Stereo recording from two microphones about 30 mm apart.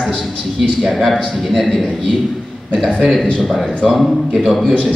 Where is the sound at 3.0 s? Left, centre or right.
Centre.